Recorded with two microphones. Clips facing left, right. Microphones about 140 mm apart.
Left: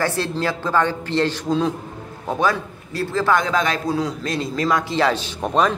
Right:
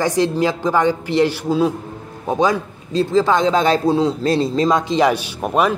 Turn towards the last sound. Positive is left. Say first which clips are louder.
# right 2 dB
turn(degrees=-10)  # may be behind; listen again after turning